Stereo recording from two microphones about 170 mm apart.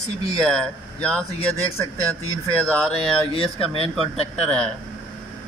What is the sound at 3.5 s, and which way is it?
Speech, 35° left (ahead or behind).